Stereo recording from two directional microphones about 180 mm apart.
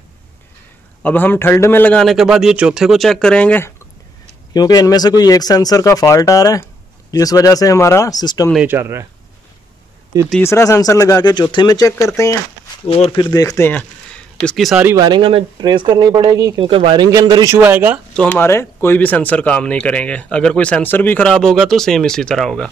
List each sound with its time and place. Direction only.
1.0 s a man's voice: 10° left (ahead or behind)
4.6 s speech: 20° left (ahead or behind)
8.6 s speech: 15° right (ahead or behind)
10.2 s speech: 10° left (ahead or behind)
12.8 s a man's voice: 35° left (ahead or behind); by 14.9 s centre (ahead or behind)
14.9 s speech: 20° right (ahead or behind)
18.1 s speech: 10° left (ahead or behind)